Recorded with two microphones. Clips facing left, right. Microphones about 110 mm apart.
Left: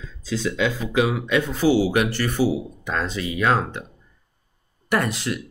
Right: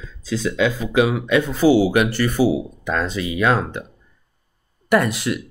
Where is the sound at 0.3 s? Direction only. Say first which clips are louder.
Right 3 dB; 55° right (ahead or behind).